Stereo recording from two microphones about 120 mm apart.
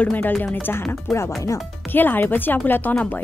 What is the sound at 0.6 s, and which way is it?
Speech, 20° left (ahead or behind).